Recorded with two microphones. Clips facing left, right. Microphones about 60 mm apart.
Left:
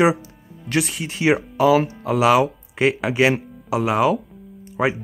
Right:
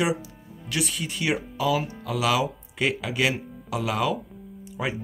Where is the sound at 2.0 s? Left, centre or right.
Left.